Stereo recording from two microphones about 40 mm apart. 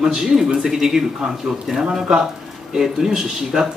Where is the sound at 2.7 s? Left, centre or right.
Centre.